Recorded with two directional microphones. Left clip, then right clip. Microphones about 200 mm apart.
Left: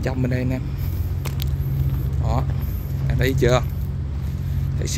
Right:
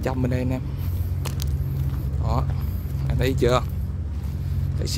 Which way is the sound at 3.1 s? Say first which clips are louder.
Left 2 dB; 10° right (ahead or behind).